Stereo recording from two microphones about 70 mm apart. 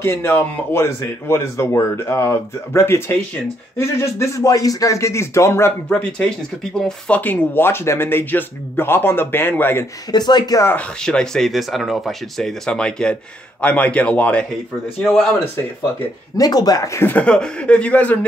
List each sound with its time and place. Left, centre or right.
0.0 s speech: left
4.5 s speech: left
5.9 s speech: centre; by 9.8 s left
10.1 s speech: left
11.0 s speech: centre
15.0 s speech: centre
16.3 s speech: left
16.9 s speech: left
17.2 s speech: centre